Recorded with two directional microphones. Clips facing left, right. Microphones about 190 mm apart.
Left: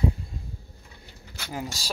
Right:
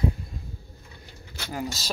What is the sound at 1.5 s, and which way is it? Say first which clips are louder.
Speech: right 2 dB; 15° left (ahead or behind).